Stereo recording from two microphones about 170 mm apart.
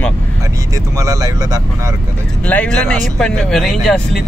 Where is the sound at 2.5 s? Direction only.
10° left (ahead or behind).